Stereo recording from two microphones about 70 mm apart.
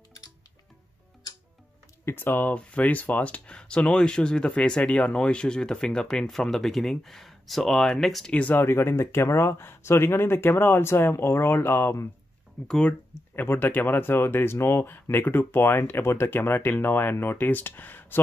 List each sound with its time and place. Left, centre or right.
2.0 s speech: left; by 8.3 s centre
8.3 s speech: centre
8.5 s speech: left
12.6 s speech: centre
13.4 s speech: left